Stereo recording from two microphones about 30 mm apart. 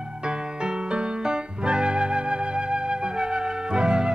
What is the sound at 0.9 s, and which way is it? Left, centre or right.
Music, right.